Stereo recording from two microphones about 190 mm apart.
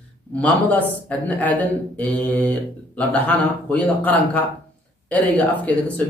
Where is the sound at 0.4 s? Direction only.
10° left (ahead or behind).